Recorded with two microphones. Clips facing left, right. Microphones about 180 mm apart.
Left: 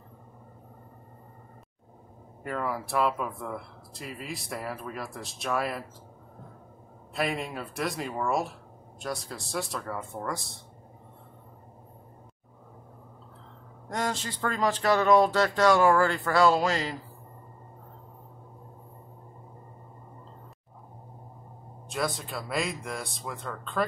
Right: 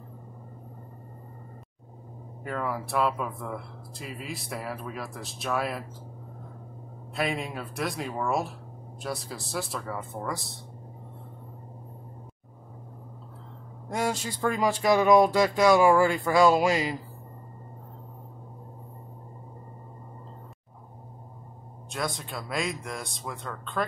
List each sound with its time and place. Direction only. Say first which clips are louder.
2.4 s speech: even; centre (ahead or behind)
7.2 s speech: even; centre (ahead or behind)
13.8 s speech: right 2 dB; 10° right (ahead or behind)
21.8 s speech: left 2 dB; centre (ahead or behind)